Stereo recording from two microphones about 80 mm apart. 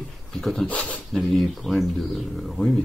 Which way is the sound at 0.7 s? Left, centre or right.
Centre.